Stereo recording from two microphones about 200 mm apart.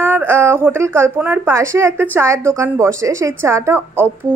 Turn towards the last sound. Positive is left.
turn(degrees=-10)  # may be behind; listen again after turning